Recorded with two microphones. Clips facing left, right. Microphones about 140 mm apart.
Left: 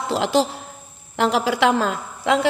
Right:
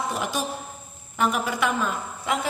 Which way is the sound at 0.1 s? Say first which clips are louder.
Left 8 dB; 85° left.